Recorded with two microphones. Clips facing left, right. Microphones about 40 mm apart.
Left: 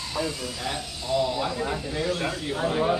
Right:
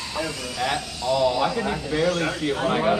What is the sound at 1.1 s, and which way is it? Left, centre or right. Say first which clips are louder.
Speech: right 5 dB; right.